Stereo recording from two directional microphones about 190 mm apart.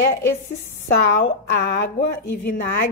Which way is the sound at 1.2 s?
60° left (ahead or behind).